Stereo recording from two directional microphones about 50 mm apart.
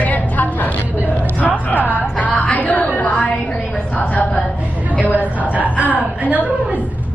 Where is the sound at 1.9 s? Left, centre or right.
Left.